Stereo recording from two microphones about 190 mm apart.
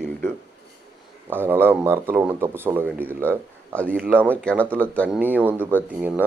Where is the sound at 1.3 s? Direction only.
10° right (ahead or behind).